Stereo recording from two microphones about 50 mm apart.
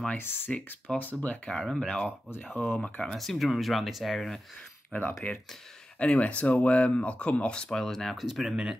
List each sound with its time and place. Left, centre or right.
0.2 s speech: left
0.7 s speech: left
1.7 s speech: centre
2.5 s speech: left
2.8 s speech: centre
3.2 s speech: centre
4.9 s speech: left; by 8.5 s centre